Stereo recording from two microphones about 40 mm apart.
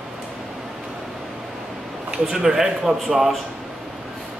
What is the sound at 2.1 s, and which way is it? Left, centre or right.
A man's voice, centre.